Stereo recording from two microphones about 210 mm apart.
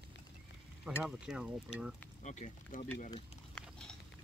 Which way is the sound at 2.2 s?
35° left (ahead or behind).